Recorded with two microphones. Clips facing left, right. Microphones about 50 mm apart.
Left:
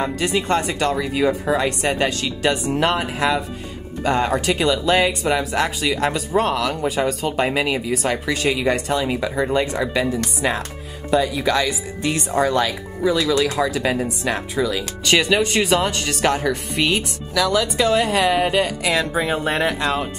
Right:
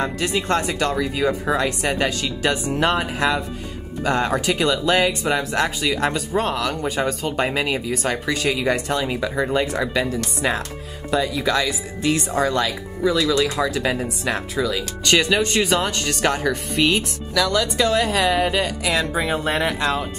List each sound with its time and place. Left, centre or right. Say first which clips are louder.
0.0 s speech: left 1 dB; centre
1.4 s speech: left 1 dB; centre
11.4 s speech: left 1 dB; centre
13.6 s speech: left 1 dB; centre